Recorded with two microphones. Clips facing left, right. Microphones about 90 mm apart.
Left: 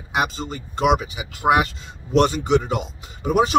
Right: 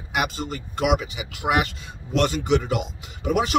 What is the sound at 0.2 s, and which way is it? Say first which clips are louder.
Speech: left 3 dB; 30° left (ahead or behind).